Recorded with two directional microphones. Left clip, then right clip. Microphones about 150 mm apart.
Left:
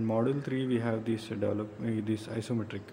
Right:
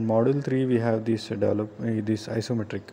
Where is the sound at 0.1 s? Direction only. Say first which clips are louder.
Right 9 dB; 25° right (ahead or behind).